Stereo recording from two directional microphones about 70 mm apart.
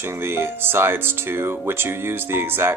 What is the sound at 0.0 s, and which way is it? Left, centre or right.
Speech, right.